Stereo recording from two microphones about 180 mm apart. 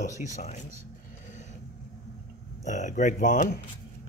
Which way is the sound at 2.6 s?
45° left (ahead or behind).